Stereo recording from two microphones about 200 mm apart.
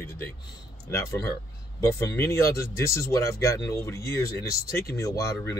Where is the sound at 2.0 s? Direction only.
15° left (ahead or behind).